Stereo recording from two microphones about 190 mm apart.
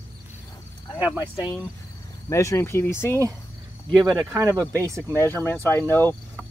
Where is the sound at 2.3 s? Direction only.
15° left (ahead or behind).